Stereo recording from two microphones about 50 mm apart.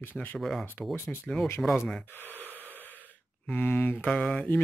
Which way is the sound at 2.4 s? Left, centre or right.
Left.